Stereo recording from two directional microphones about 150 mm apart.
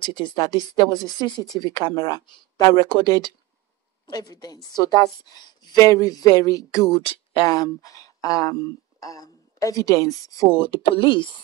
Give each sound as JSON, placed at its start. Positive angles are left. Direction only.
{"t": 0.0, "sound": "a woman's voice", "side_deg": 30}
{"t": 7.0, "sound": "speech", "side_deg": 40}
{"t": 7.4, "sound": "a woman's voice", "side_deg": 25}
{"t": 10.6, "sound": "speech", "side_deg": 35}